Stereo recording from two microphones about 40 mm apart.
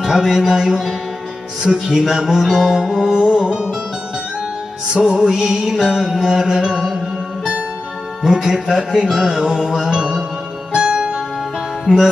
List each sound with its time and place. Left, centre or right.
0.0 s music: centre
2.0 s music: centre
5.0 s music: centre
8.2 s music: centre